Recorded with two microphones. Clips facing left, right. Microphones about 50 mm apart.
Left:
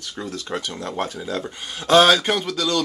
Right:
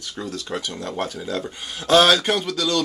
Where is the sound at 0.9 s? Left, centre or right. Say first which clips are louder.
Even; centre.